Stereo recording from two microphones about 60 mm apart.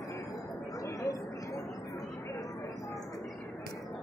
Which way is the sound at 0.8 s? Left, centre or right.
Left.